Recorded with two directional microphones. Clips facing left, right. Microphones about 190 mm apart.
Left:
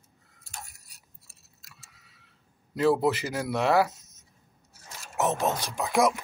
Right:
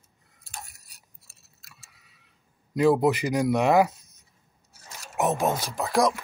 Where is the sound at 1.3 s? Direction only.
70° right (ahead or behind).